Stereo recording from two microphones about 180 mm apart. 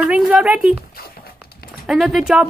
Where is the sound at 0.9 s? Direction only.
55° left (ahead or behind).